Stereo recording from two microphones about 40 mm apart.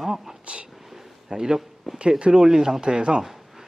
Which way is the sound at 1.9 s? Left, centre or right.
Centre.